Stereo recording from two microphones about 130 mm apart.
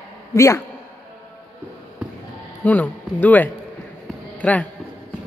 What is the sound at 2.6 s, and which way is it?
A man's voice, 10° left (ahead or behind).